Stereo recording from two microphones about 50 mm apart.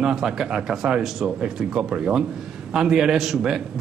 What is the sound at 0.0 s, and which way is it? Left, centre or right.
A man's voice, centre.